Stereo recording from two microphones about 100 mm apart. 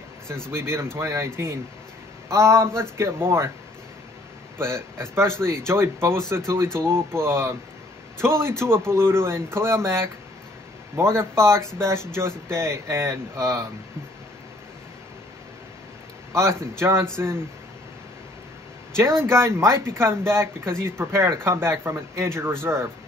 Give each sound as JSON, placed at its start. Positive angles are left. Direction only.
{"t": 0.5, "sound": "speech", "side_deg": -25}
{"t": 4.6, "sound": "speech", "side_deg": -25}
{"t": 16.3, "sound": "speech", "side_deg": -25}
{"t": 18.9, "sound": "speech", "side_deg": -25}